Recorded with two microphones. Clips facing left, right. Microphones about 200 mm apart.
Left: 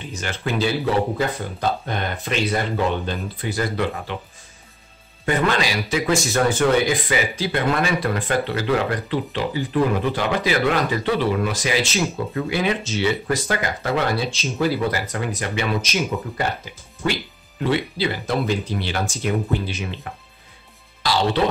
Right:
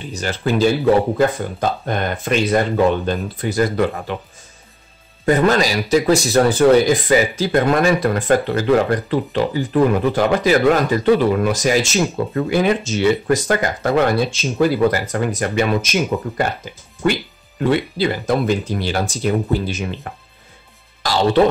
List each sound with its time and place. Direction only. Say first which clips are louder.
0.1 s speech: right 6 dB; 35° right (ahead or behind)
5.2 s speech: right 6 dB; 40° right (ahead or behind)
17.6 s speech: right 4 dB; 50° right (ahead or behind)